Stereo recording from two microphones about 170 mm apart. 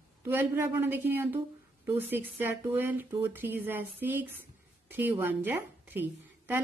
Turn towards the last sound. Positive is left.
turn(degrees=-10)  # may be behind; listen again after turning